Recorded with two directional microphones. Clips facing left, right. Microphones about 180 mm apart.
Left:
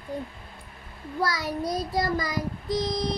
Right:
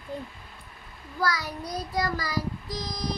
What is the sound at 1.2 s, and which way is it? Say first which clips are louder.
Child singing: left 2 dB; 30° left (ahead or behind).